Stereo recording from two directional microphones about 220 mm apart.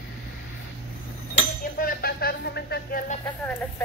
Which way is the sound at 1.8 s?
45° left (ahead or behind).